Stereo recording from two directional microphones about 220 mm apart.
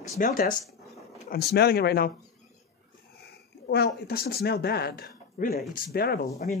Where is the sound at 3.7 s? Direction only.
45° left (ahead or behind).